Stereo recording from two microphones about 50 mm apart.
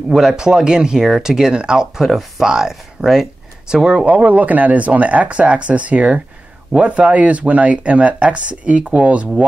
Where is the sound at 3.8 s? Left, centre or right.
Right.